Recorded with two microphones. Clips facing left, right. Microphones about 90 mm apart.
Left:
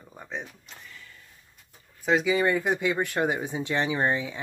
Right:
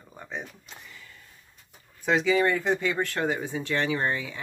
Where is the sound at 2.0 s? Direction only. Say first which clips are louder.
Even; 10° left (ahead or behind).